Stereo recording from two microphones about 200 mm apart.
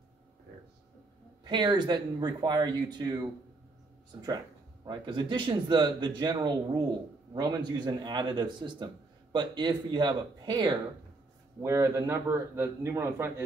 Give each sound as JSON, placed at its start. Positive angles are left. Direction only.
{"t": 1.4, "sound": "a man's voice", "side_deg": -20}
{"t": 4.8, "sound": "a man's voice", "side_deg": -25}